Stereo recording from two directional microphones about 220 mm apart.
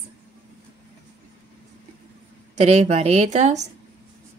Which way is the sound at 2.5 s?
30° right (ahead or behind).